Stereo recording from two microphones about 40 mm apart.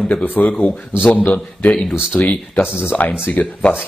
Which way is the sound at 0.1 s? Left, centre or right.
Left.